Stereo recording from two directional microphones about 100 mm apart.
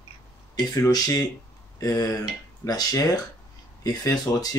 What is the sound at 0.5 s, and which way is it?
Speech, 40° left (ahead or behind).